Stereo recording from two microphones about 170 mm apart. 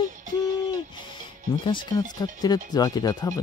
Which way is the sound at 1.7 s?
25° left (ahead or behind).